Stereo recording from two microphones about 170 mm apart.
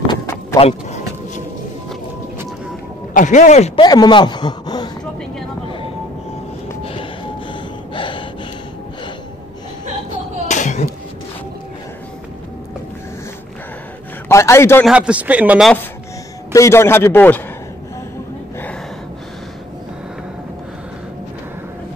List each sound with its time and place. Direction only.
0.0 s a sound: 20° left (ahead or behind)
0.6 s speech: 40° left (ahead or behind)
3.1 s speech: 50° left (ahead or behind)
3.8 s a man's voice: 25° left (ahead or behind)
6.8 s train: 30° left (ahead or behind)
7.9 s gasp: 30° left (ahead or behind)
10.5 s a sound: 45° left (ahead or behind)
14.3 s a man's voice: 15° left (ahead or behind)
14.9 s a man's voice: 5° right (ahead or behind)
16.5 s a man's voice: 15° left (ahead or behind)